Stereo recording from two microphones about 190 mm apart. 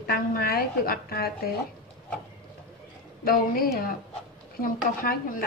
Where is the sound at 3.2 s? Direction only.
50° left (ahead or behind).